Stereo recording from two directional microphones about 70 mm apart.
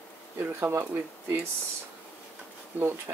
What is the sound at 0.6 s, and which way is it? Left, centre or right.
Speech, right.